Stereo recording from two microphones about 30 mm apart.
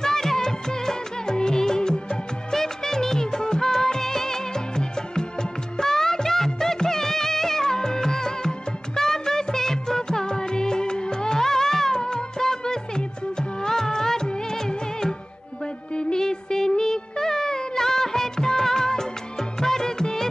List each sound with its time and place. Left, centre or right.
0.0 s music: centre
2.5 s music of bollywood: centre
15.9 s music: left
16.2 s music: left